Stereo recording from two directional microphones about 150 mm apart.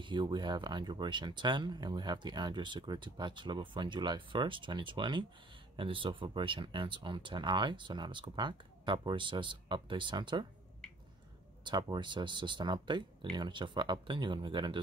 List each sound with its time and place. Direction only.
0.0 s speech: 30° right (ahead or behind)
11.6 s speech: 30° right (ahead or behind)